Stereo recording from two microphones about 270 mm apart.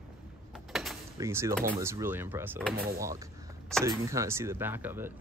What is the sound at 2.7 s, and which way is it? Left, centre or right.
Speech, right.